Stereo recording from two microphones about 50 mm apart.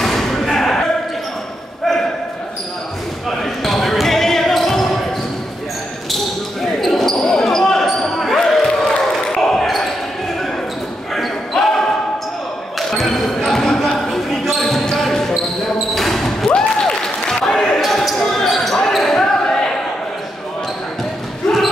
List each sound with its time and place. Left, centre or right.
0.0 s slam: centre
3.3 s basketball bounce: centre
6.1 s basketball bounce: centre
11.1 s basketball bounce: centre
12.9 s basketball bounce: centre